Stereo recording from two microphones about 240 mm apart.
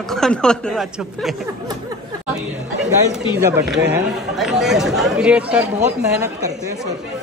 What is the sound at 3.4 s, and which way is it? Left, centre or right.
Speech, centre.